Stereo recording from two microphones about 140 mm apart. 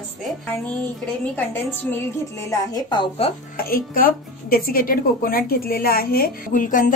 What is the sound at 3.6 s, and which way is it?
Speech, 90° left.